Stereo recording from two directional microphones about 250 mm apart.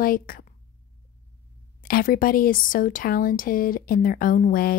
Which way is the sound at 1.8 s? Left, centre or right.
Left.